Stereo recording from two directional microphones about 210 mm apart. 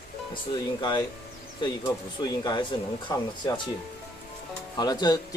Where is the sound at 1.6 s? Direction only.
20° left (ahead or behind).